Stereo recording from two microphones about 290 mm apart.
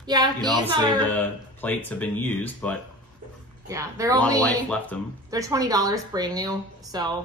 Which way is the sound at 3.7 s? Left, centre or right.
Centre.